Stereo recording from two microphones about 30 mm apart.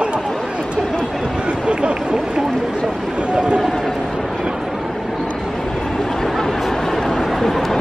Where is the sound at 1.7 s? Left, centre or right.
Right.